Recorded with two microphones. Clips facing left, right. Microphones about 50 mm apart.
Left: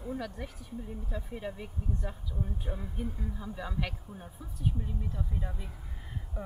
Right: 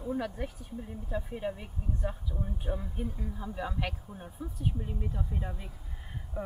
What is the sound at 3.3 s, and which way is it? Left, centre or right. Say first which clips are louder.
Speech: right 2 dB; centre.